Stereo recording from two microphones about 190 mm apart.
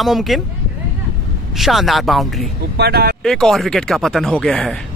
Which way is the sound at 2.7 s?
60° right (ahead or behind).